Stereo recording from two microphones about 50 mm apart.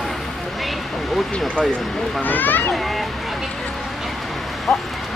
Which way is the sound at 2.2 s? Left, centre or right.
Left.